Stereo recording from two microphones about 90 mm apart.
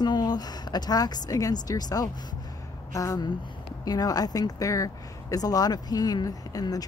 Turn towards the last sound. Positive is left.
turn(degrees=45)  # may be behind; listen again after turning